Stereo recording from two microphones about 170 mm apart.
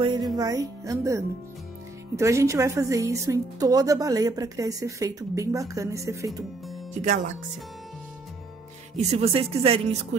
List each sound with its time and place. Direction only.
0.0 s music: 25° right (ahead or behind)
0.4 s a woman's voice: 20° right (ahead or behind)
6.9 s speech: 45° right (ahead or behind)
8.9 s speech: 40° right (ahead or behind)